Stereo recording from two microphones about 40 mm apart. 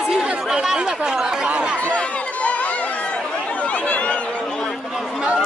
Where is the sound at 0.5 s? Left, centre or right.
Centre.